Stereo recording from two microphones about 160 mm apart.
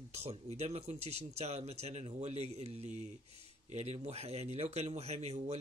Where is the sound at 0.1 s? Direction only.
40° right (ahead or behind).